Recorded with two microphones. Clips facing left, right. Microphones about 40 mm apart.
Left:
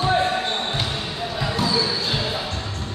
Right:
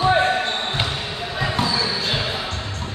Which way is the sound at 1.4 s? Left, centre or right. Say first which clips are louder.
Right 1 dB; right.